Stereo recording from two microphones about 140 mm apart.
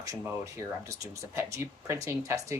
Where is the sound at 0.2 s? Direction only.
20° right (ahead or behind).